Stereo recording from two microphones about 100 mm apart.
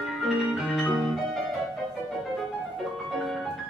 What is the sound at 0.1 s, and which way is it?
Music, 5° right (ahead or behind).